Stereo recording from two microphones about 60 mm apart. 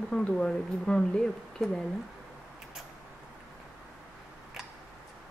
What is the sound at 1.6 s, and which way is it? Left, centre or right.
Speech, centre.